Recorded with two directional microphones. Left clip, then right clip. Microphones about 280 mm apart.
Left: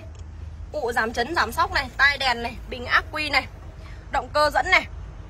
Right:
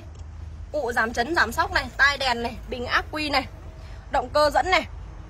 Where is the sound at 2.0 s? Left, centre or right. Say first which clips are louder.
Left 1 dB; centre.